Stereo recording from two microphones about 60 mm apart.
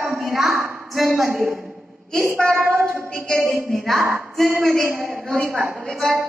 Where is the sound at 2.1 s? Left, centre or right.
Centre.